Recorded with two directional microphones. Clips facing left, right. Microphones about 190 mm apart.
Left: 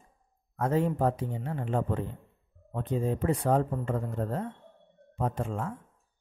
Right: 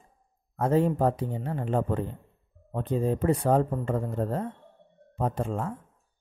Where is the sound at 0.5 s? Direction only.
30° right (ahead or behind).